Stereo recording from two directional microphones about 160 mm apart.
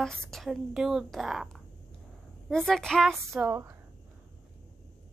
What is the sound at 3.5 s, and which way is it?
Speech, 15° right (ahead or behind).